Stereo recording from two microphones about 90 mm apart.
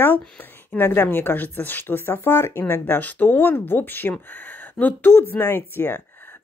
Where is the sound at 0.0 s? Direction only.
20° left (ahead or behind).